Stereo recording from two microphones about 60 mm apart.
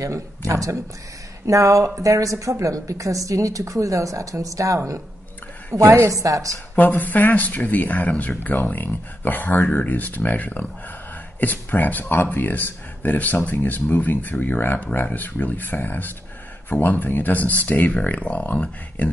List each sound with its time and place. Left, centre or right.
0.0 s a woman's voice: right
5.9 s a woman's voice: right
6.8 s speech: left